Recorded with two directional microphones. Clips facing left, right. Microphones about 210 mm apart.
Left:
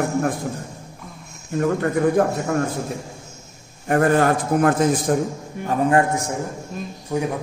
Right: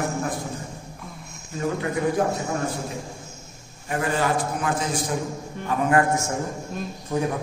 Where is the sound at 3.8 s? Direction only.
55° left (ahead or behind).